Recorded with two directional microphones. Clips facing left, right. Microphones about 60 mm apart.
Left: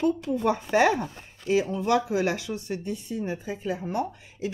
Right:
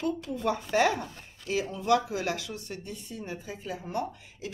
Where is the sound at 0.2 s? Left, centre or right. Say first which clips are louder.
Left 5 dB; centre.